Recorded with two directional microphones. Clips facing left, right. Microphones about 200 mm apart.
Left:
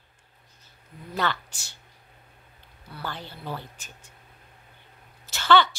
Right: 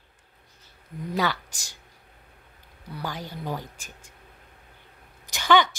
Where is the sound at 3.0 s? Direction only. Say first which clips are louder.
Right 3 dB; 15° right (ahead or behind).